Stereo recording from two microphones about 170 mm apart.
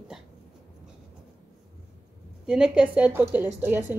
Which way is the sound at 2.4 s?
5° right (ahead or behind).